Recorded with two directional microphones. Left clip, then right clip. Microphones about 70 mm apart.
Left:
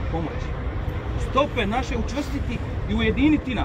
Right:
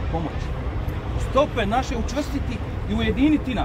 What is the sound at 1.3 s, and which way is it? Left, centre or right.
Speech, right.